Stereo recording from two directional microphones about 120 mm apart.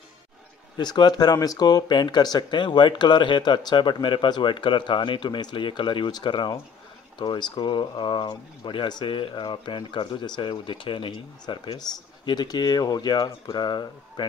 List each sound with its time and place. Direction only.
0.7 s speech: 40° left (ahead or behind)